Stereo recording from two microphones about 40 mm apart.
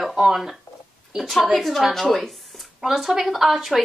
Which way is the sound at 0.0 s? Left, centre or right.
Centre.